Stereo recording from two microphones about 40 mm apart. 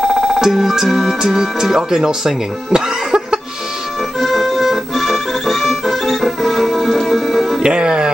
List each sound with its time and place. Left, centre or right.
0.0 s music: centre
0.4 s speech: centre
0.8 s music: centre
1.2 s speech: centre
4.2 s music: centre
7.6 s music: right